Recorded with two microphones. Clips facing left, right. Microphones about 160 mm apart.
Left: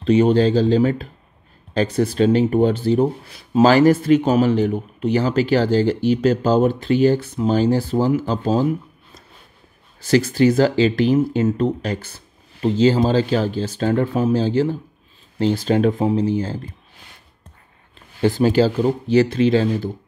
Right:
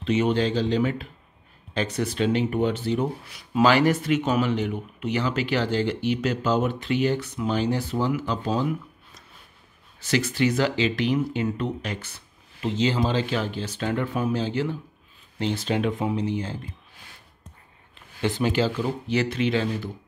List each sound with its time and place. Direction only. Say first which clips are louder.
0.0 s speech: left 8 dB; 35° left (ahead or behind)
17.9 s speech: left 8 dB; 35° left (ahead or behind)